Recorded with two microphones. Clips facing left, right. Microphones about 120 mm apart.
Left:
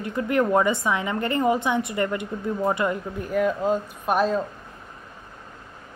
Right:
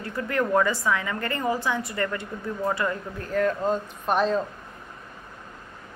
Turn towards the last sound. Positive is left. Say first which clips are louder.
# left 1 dB
turn(degrees=5)  # may be behind; listen again after turning